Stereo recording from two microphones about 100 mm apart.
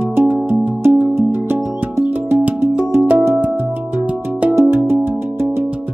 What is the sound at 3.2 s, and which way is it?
Music, 20° right (ahead or behind).